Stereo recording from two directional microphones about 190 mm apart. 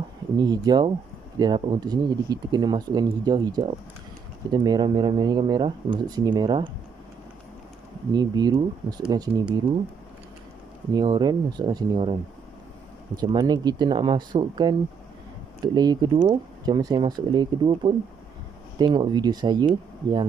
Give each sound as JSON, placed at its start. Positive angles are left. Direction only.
{"t": 0.4, "sound": "speech", "side_deg": -20}
{"t": 8.1, "sound": "speech", "side_deg": -20}
{"t": 10.9, "sound": "speech", "side_deg": -20}